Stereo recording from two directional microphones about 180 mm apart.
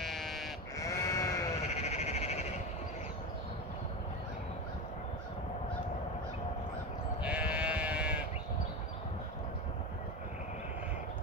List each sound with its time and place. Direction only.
0.0 s sheep: centre (ahead or behind)
0.7 s sheep: 20° left (ahead or behind)
1.8 s frog: 40° left (ahead or behind)
7.2 s sheep: 5° right (ahead or behind)